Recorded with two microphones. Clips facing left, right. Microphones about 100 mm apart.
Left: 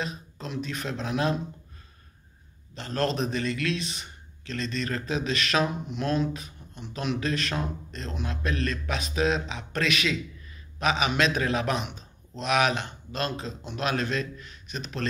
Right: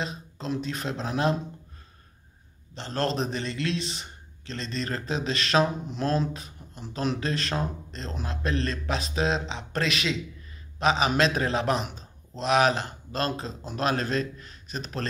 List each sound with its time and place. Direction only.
0.0 s speech: 30° right (ahead or behind)
2.7 s speech: 30° right (ahead or behind)